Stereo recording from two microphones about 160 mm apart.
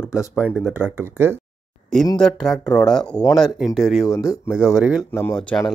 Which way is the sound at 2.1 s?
5° left (ahead or behind).